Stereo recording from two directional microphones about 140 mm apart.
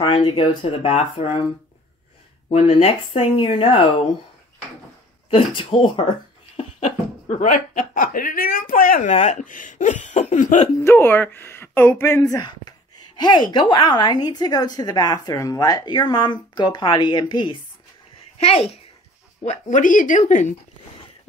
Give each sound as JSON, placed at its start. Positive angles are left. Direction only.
{"t": 0.0, "sound": "speech", "side_deg": 35}
{"t": 2.5, "sound": "speech", "side_deg": 45}
{"t": 5.3, "sound": "speech", "side_deg": 40}
{"t": 7.2, "sound": "speech", "side_deg": 65}
{"t": 9.1, "sound": "speech", "side_deg": 60}
{"t": 10.8, "sound": "speech", "side_deg": 15}
{"t": 18.4, "sound": "a child's voice", "side_deg": 45}
{"t": 19.4, "sound": "speech", "side_deg": 65}